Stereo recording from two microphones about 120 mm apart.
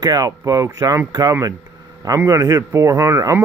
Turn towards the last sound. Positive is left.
turn(degrees=-25)  # may be behind; listen again after turning